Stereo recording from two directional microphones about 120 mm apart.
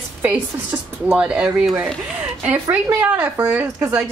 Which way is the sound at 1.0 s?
10° right (ahead or behind).